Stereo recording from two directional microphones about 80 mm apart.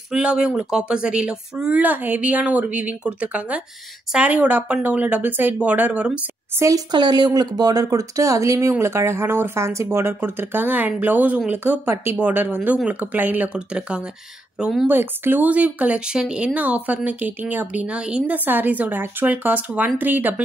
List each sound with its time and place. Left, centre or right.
0.1 s speech: centre
6.5 s speech: right
6.9 s speech: right
11.8 s speech: right; by 14.0 s centre
14.6 s speech: centre
14.9 s speech: right